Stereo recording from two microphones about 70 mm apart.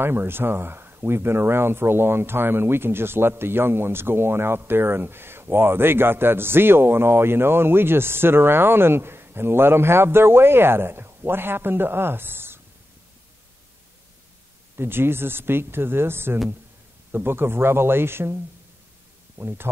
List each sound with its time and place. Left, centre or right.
0.0 s speech: right
14.8 s speech: right